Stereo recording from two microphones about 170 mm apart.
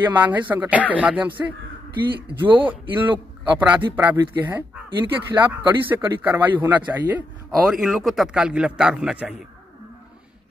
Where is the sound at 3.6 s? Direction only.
10° right (ahead or behind).